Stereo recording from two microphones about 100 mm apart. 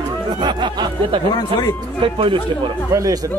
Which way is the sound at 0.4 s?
50° right (ahead or behind).